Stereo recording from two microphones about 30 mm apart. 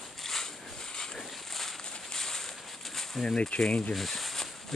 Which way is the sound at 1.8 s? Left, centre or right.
Left.